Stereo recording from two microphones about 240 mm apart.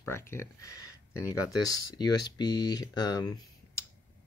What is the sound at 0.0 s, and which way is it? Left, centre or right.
Speech, centre.